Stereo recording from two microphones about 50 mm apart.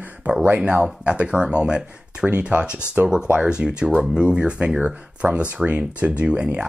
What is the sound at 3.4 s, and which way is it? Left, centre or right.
Speech, centre.